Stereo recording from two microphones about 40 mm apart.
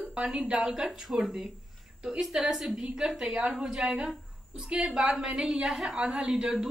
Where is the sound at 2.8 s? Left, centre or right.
Centre.